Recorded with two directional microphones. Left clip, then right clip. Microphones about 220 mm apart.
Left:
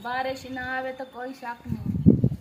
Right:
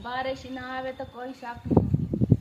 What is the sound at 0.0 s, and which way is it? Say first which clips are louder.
A woman's voice: left 2 dB; 15° left (ahead or behind).